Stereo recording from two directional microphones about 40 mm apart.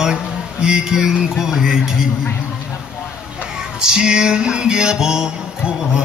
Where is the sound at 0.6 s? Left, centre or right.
Centre.